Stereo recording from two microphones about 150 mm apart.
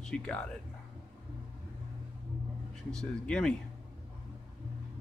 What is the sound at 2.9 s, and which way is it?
Speech, 5° left (ahead or behind).